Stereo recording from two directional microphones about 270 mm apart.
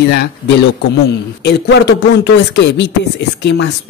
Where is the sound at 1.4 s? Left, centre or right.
Left.